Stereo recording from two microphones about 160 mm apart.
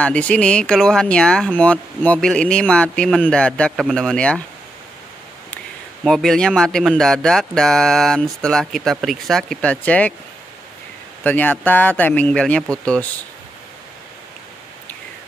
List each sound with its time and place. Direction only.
0.0 s speech: 10° left (ahead or behind)
6.0 s speech: centre (ahead or behind)
11.2 s speech: 10° left (ahead or behind)